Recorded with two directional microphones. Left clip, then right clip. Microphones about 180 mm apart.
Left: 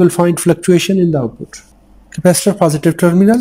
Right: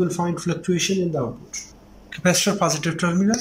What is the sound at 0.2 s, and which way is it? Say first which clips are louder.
Speech: left 13 dB; 55° left (ahead or behind).